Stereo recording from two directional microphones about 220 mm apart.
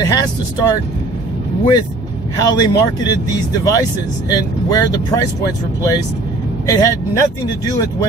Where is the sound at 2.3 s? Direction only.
15° left (ahead or behind).